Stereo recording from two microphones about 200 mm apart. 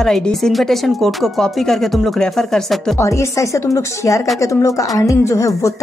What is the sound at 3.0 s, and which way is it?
Speech, 15° left (ahead or behind).